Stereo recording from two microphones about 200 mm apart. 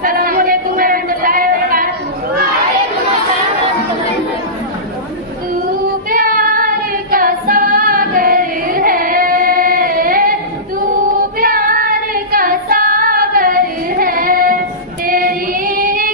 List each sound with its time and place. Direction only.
0.0 s a sound: 45° right (ahead or behind)
6.0 s female singing: 45° right (ahead or behind)
11.3 s child singing: 45° right (ahead or behind)
15.0 s female singing: 45° right (ahead or behind)